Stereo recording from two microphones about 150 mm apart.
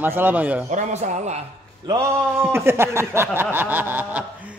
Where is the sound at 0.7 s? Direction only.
55° right (ahead or behind).